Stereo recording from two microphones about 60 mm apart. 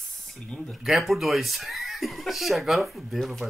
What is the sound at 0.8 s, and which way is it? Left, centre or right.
Speech, centre.